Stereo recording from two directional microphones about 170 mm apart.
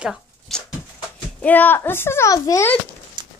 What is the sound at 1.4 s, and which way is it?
A child's voice, 10° left (ahead or behind).